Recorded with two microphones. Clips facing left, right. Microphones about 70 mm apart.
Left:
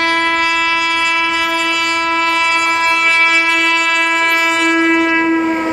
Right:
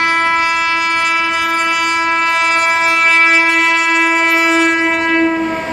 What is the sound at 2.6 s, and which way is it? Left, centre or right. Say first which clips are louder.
Train: right 1 dB; right.